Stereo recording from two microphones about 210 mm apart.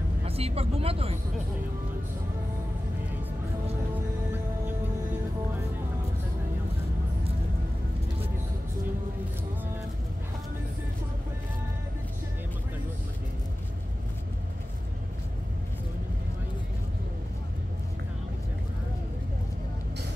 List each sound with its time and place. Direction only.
0.2 s speech: 30° right (ahead or behind)
3.9 s music: 10° right (ahead or behind)